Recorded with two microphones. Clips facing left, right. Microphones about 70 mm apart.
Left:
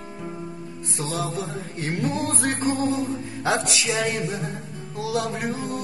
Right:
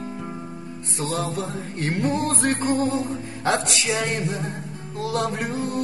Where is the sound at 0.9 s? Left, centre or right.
Centre.